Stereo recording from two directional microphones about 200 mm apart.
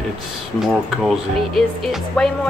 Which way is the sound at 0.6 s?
Centre (ahead or behind).